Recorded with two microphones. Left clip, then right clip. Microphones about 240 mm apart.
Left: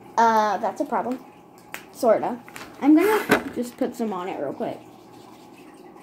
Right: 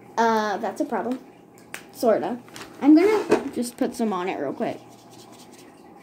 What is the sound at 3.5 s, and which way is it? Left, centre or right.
Speech, centre.